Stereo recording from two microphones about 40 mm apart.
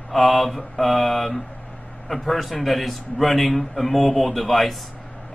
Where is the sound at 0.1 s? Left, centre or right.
Centre.